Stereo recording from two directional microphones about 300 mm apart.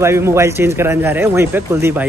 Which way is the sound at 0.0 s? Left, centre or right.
Centre.